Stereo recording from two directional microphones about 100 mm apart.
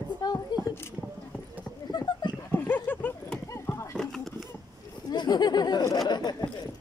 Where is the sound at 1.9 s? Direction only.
45° left (ahead or behind).